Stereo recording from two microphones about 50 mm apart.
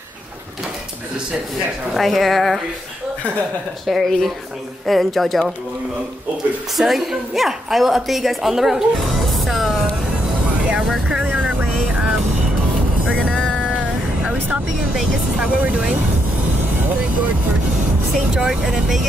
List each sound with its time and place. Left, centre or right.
2.0 s a woman's voice: centre
3.8 s a woman's voice: centre
6.8 s a woman's voice: centre
11.1 s vehicle: right
11.9 s music: centre
13.3 s music: centre
13.6 s vehicle: centre
15.3 s speech: right
18.3 s speech: centre